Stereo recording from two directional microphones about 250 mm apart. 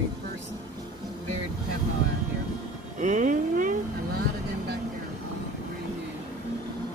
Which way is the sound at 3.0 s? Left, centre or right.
Right.